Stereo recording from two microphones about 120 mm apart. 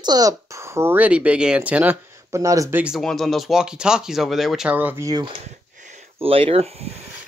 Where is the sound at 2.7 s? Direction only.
10° right (ahead or behind).